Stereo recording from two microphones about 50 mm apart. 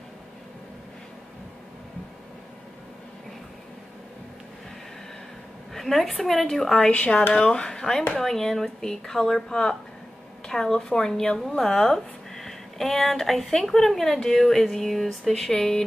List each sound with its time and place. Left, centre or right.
5.7 s a sound: centre
6.2 s speech: centre
6.9 s a woman's voice: left; by 15.8 s centre